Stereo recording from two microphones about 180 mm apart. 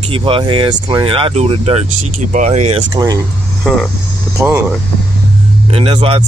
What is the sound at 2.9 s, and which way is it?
Speech, 20° right (ahead or behind).